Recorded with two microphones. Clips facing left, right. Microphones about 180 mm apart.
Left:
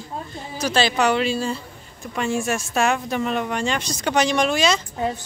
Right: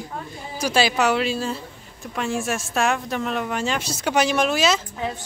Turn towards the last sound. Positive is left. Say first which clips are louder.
# left 1 dB
turn(degrees=-5)  # may be behind; listen again after turning